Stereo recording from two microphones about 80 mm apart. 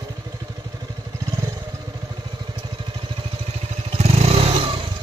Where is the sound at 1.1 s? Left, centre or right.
Right.